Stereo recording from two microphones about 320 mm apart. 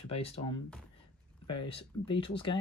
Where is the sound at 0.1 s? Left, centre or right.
Centre.